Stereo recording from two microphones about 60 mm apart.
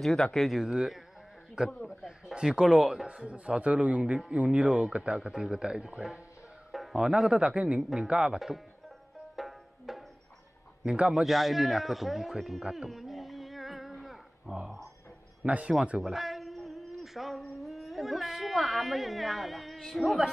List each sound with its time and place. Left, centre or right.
0.0 s a man's voice: centre
6.7 s music: centre
7.0 s a man's voice: centre
9.3 s music: centre
10.9 s a man's voice: centre
11.2 s a sound: centre
15.4 s speech: centre
16.0 s a sound: centre